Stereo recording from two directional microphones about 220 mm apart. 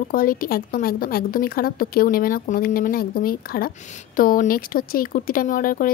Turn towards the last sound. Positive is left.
turn(degrees=40)  # may be behind; listen again after turning